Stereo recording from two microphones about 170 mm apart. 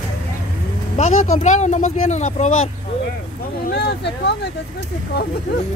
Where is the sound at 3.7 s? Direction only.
75° left (ahead or behind).